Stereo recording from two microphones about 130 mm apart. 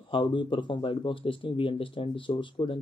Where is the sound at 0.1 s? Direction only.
40° left (ahead or behind).